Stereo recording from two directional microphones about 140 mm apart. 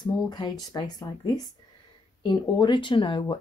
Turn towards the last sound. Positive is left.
turn(degrees=35)  # may be behind; listen again after turning